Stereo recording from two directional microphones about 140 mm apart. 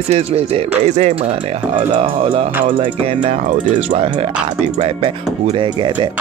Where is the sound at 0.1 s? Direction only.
45° right (ahead or behind).